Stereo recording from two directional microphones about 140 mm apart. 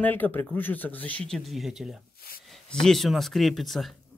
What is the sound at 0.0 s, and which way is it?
Speech, 15° left (ahead or behind).